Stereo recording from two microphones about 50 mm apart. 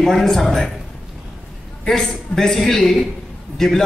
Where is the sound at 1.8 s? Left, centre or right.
Centre.